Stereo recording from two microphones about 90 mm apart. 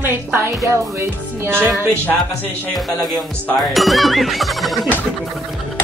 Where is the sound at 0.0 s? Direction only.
25° right (ahead or behind).